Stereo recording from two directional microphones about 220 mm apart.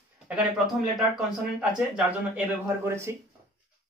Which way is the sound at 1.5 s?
5° right (ahead or behind).